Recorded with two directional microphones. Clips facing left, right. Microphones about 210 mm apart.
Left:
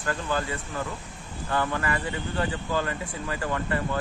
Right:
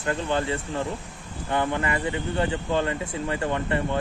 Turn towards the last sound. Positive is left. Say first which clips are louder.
# right 3 dB
turn(degrees=-25)  # may be behind; listen again after turning